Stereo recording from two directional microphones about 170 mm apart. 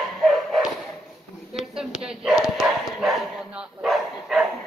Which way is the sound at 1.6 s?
Centre (ahead or behind).